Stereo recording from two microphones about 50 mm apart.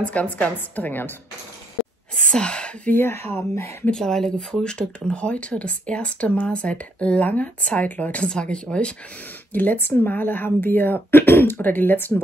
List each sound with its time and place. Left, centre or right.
0.0 s a woman's voice: left
2.2 s speech: centre
3.0 s speech: left
3.9 s speech: centre; by 8.3 s left
8.3 s speech: centre
9.5 s speech: left
9.8 s speech: left